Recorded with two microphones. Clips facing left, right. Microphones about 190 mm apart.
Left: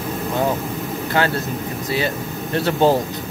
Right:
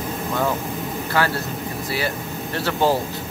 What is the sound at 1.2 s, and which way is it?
Speech, 20° left (ahead or behind).